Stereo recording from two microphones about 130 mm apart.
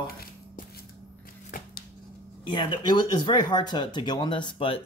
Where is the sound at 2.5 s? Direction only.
35° left (ahead or behind).